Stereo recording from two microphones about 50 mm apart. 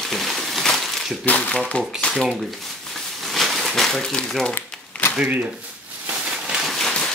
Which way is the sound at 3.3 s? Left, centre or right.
Centre.